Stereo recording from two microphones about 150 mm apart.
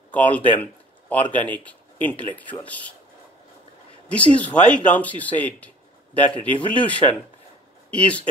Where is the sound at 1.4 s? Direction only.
10° left (ahead or behind).